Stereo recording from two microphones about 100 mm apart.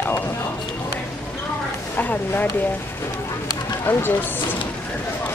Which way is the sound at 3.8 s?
20° left (ahead or behind).